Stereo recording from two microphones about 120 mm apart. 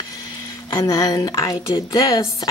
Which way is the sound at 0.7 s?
30° left (ahead or behind).